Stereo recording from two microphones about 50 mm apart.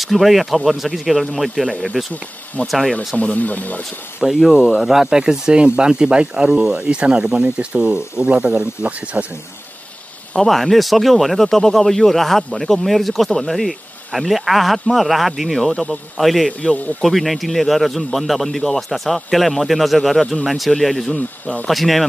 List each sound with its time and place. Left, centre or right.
0.0 s speech: centre
3.2 s speech: left
4.2 s speech: centre; by 9.2 s right
10.3 s speech: centre